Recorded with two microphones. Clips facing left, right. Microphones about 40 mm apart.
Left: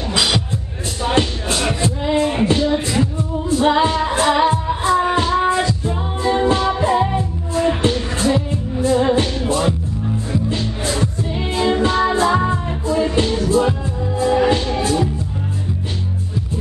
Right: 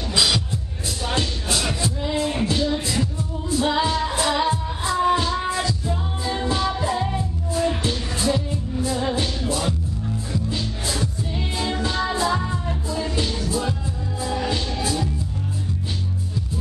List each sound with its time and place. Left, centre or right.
1.0 s music: left